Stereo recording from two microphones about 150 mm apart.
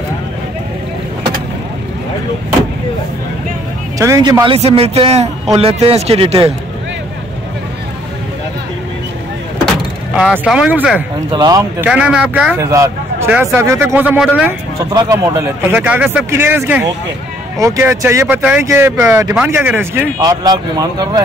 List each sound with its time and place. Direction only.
4.0 s speech: 20° right (ahead or behind)
4.6 s speech: 40° right (ahead or behind)
10.4 s speech: 5° right (ahead or behind)
11.3 s speech: 25° right (ahead or behind)
11.8 s speech: 5° right (ahead or behind)
12.5 s speech: 20° right (ahead or behind)
14.9 s speech: 20° right (ahead or behind)
15.7 s speech: 10° right (ahead or behind)
20.2 s speech: 25° right (ahead or behind)